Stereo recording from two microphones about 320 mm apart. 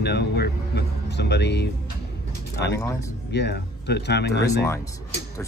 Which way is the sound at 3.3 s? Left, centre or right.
Left.